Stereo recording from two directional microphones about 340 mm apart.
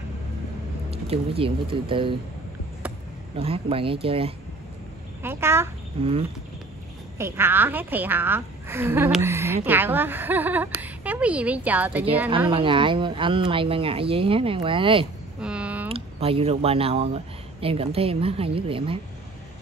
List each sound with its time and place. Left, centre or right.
0.8 s speech: centre
3.3 s a woman's voice: centre
15.4 s a sound: centre
15.9 s speech: centre